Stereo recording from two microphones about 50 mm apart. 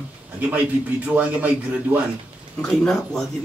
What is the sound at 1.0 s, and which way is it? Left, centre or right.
Speech, right.